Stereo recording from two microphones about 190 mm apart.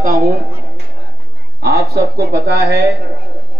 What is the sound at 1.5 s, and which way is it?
Speech, 55° right (ahead or behind).